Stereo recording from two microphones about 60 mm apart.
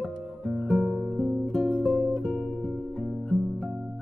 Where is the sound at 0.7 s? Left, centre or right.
Centre.